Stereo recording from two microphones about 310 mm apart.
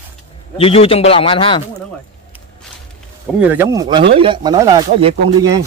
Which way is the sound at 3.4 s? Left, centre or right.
Centre.